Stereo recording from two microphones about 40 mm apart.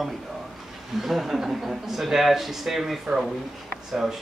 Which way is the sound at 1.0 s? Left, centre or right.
Centre.